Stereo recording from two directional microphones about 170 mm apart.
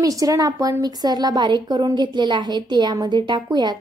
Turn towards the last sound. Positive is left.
turn(degrees=-25)  # may be behind; listen again after turning